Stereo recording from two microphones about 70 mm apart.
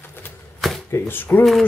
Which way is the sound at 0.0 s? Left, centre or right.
Left.